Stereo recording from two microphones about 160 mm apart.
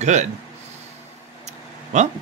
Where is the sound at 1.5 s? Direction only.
45° right (ahead or behind).